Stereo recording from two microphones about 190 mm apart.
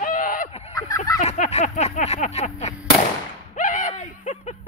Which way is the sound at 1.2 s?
35° left (ahead or behind).